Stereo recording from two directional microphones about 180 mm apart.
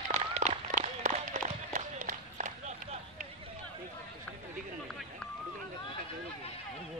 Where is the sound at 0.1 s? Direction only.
40° right (ahead or behind).